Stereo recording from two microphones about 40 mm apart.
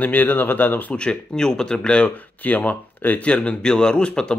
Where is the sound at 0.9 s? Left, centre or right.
Left.